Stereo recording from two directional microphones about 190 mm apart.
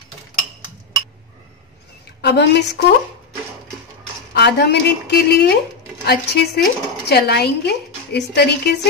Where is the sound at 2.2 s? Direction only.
65° left (ahead or behind).